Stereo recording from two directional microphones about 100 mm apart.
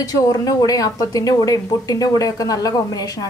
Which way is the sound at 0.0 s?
40° left (ahead or behind).